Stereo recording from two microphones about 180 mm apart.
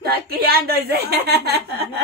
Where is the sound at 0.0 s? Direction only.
60° right (ahead or behind).